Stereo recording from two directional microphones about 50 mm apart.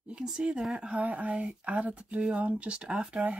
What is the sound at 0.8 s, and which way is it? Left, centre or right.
Speech, right.